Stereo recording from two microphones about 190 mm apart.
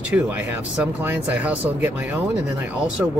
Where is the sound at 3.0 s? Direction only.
10° right (ahead or behind).